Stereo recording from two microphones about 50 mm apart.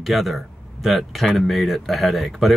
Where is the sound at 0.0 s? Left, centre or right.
Centre.